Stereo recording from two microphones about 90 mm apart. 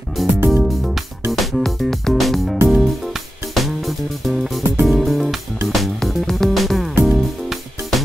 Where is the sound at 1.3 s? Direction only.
Centre (ahead or behind).